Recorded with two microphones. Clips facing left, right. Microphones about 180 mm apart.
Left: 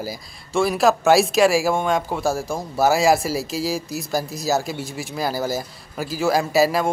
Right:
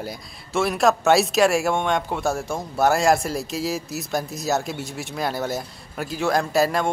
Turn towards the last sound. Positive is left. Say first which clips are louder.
# left 2 dB
turn(degrees=5)  # may be behind; listen again after turning